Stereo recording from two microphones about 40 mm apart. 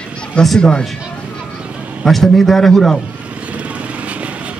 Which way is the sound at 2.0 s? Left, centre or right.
Centre.